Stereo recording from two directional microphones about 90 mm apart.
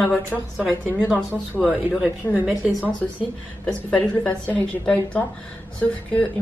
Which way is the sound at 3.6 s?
10° left (ahead or behind).